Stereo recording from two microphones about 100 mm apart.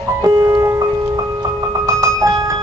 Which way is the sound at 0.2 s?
35° right (ahead or behind).